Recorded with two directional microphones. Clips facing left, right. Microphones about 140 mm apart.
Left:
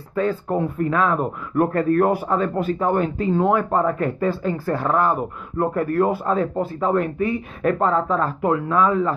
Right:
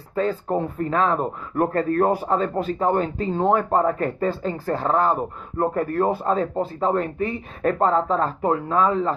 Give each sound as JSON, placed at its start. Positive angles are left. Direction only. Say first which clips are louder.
{"t": 0.5, "sound": "speech", "louder": "left 2 dB", "side_deg": -25}
{"t": 0.9, "sound": "speech", "louder": "right 1 dB", "side_deg": -35}